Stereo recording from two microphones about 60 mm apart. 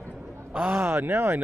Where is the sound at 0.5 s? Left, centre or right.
Right.